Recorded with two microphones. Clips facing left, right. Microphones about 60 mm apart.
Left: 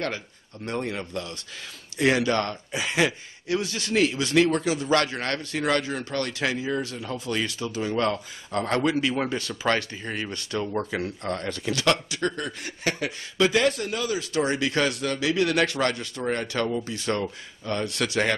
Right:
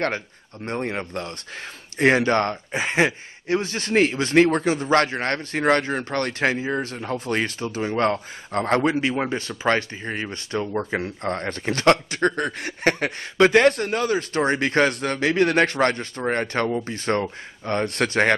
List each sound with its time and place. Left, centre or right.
0.7 s speech: right